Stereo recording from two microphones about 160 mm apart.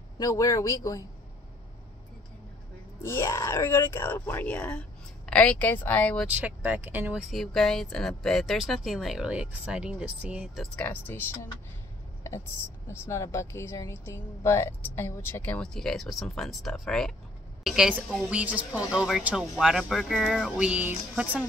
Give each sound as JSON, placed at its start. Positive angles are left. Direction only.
{"t": 0.2, "sound": "speech", "side_deg": 20}
{"t": 3.0, "sound": "speech", "side_deg": 15}
{"t": 6.3, "sound": "speech", "side_deg": -10}
{"t": 13.0, "sound": "a woman's voice", "side_deg": 15}